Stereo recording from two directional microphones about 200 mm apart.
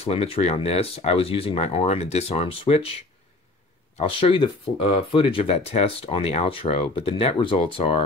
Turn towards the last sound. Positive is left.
turn(degrees=25)  # may be behind; listen again after turning